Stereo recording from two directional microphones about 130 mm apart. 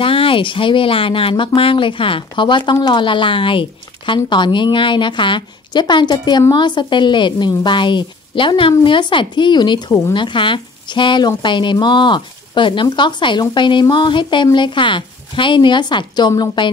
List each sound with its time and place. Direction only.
0.0 s speech: 45° left (ahead or behind)